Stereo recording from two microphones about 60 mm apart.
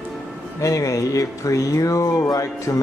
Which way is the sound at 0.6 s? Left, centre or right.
Left.